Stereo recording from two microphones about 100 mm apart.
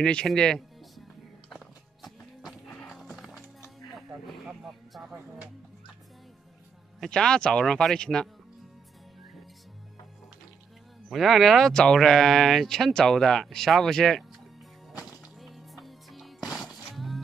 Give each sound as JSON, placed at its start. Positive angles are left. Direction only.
{"t": 0.0, "sound": "speech", "side_deg": 10}
{"t": 1.5, "sound": "music", "side_deg": 0}
{"t": 4.5, "sound": "speech", "side_deg": -5}
{"t": 7.0, "sound": "speech", "side_deg": 5}
{"t": 11.1, "sound": "speech", "side_deg": 0}
{"t": 15.3, "sound": "music", "side_deg": 0}